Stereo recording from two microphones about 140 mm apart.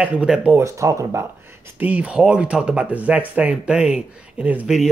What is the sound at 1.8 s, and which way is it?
Speech, 10° right (ahead or behind).